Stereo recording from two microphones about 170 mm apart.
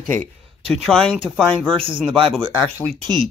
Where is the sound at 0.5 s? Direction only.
35° right (ahead or behind).